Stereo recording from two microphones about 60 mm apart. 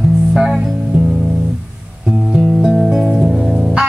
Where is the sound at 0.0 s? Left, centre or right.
Centre.